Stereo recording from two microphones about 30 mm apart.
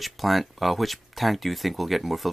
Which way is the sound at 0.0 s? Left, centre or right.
Centre.